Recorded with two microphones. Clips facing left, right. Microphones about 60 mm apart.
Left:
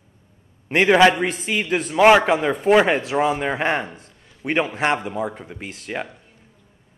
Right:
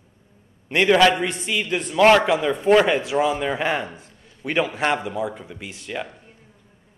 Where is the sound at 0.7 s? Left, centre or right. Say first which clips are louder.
Left 2 dB; left.